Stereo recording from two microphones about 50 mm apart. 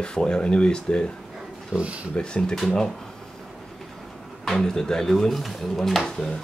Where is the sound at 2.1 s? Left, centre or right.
Centre.